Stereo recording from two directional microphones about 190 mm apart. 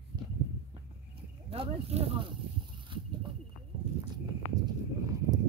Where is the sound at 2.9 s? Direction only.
25° right (ahead or behind).